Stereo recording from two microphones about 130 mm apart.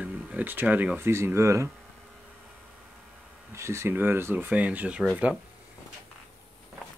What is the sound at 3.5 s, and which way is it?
Speech, 20° right (ahead or behind).